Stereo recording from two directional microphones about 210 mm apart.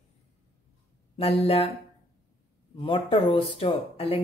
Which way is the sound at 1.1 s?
30° left (ahead or behind).